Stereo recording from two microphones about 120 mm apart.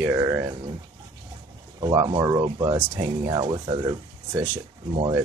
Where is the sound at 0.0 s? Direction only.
25° right (ahead or behind).